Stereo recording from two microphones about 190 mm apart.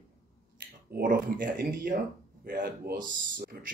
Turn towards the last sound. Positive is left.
turn(degrees=-45)  # may be behind; listen again after turning